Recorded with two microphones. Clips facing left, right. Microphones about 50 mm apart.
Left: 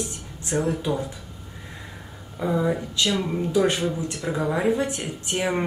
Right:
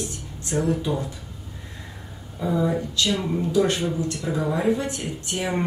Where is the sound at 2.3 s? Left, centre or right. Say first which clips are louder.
Even; centre.